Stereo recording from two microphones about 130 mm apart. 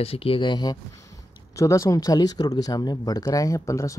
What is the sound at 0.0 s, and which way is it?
Speech, 50° left (ahead or behind).